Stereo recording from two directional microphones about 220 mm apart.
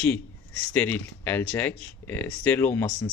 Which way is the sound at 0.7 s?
10° left (ahead or behind).